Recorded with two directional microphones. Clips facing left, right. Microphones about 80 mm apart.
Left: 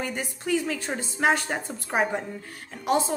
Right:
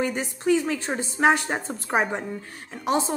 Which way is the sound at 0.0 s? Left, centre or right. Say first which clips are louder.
Right 6 dB; right.